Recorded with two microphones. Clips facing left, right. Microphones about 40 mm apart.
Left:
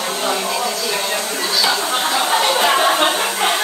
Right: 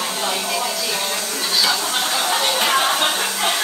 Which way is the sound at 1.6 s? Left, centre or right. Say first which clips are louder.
Left 2 dB; left.